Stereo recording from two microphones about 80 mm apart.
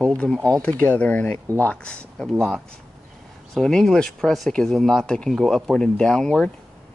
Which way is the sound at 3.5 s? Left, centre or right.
Centre.